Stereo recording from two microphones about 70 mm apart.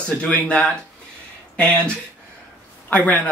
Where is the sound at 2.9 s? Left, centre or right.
Left.